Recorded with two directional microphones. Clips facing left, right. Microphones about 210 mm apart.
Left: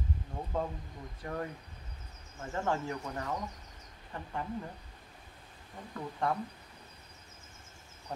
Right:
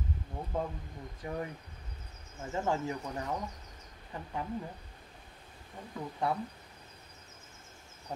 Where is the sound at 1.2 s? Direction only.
10° right (ahead or behind).